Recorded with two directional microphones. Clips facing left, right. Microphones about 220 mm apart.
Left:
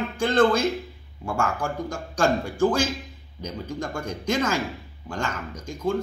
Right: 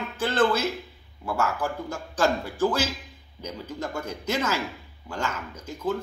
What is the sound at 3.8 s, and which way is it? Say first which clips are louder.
Speech: right 1 dB; 10° right (ahead or behind).